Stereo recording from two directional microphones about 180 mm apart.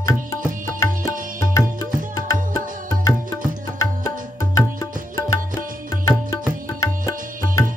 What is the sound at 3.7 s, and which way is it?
Music, 15° left (ahead or behind).